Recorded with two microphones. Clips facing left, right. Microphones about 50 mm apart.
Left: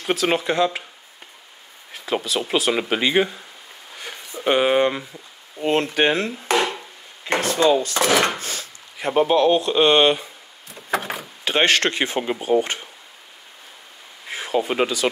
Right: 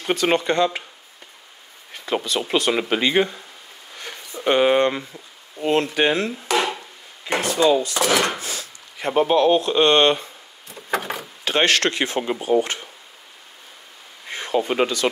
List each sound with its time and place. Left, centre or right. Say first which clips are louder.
0.0 s speech: right 1 dB; centre
1.9 s speech: even; centre
4.0 s a sound: even; centre
6.0 s speech: even; left
6.5 s wood: left 1 dB; centre
7.4 s wood: even; left
8.4 s a sound: even; left
9.0 s a sound: even; centre
11.5 s speech: even; left
14.2 s speech: even; centre